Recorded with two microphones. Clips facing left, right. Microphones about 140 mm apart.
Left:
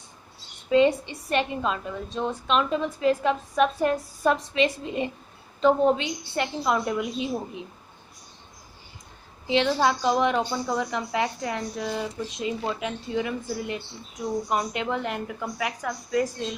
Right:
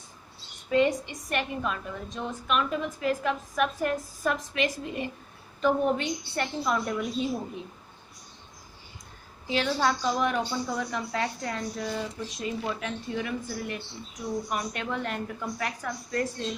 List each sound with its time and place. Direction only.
0.7 s a woman's voice: 25° left (ahead or behind)
9.5 s a woman's voice: 20° left (ahead or behind)